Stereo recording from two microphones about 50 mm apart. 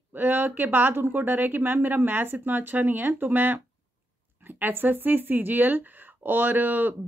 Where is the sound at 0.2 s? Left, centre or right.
Right.